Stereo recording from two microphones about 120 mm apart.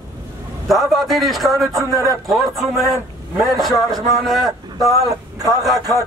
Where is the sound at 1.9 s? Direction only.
30° right (ahead or behind).